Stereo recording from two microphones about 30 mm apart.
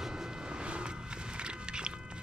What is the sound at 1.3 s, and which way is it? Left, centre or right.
Mechanisms, right.